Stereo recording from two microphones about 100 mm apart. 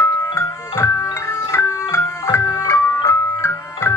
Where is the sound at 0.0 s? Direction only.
25° left (ahead or behind).